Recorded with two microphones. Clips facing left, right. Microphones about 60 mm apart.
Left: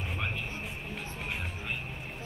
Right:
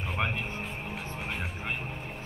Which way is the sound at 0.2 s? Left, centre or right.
Right.